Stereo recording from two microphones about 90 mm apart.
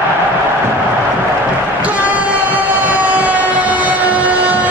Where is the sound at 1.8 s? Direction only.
15° right (ahead or behind).